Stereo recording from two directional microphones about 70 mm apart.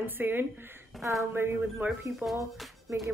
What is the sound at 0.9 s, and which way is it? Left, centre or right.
Speech, centre.